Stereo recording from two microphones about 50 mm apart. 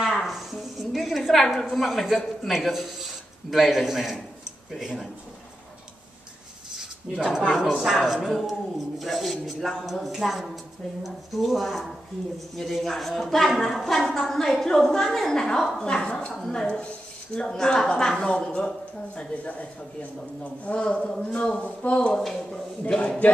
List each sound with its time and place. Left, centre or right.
0.1 s a sound: centre
2.4 s speech: centre
6.7 s a woman's voice: centre; by 21.9 s left
22.1 s a woman's voice: centre
22.9 s speech: left